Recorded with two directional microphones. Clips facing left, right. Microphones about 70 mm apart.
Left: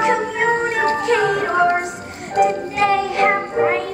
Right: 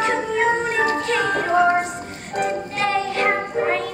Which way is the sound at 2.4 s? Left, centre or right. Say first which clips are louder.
Left 6 dB; centre.